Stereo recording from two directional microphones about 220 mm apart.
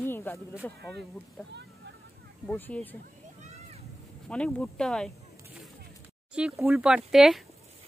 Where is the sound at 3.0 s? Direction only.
30° right (ahead or behind).